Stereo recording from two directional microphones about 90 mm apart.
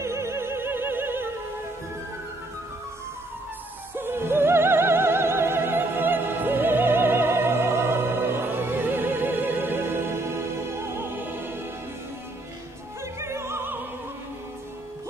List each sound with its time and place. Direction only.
0.0 s opera: 30° right (ahead or behind)
3.9 s opera: 25° right (ahead or behind)
10.8 s music: 25° right (ahead or behind)
13.0 s opera: 30° right (ahead or behind)